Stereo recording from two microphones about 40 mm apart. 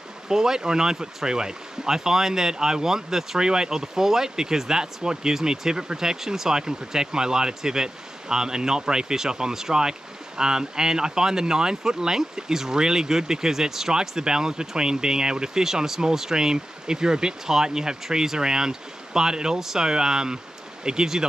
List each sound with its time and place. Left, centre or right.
0.3 s speech: centre